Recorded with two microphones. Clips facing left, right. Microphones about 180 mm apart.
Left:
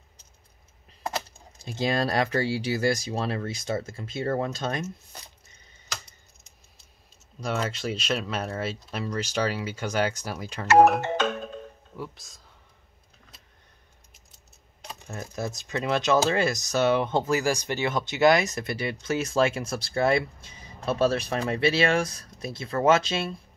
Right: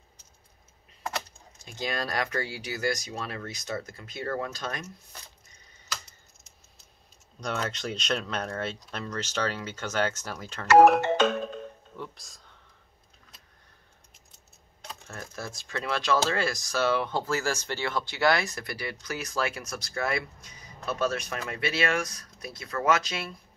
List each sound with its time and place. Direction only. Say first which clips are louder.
1.1 s speech: left 3 dB; 30° left (ahead or behind)
7.3 s speech: left 3 dB; 5° left (ahead or behind)
12.0 s speech: left 3 dB; 5° left (ahead or behind)
14.9 s speech: left 4 dB; 20° left (ahead or behind)